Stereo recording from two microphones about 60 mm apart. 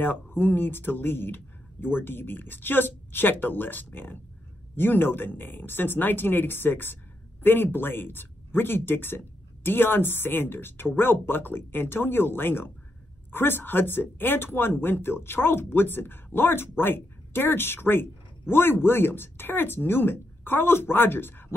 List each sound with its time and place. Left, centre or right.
0.0 s speech: left